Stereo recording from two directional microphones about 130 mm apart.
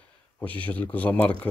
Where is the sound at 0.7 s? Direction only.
10° left (ahead or behind).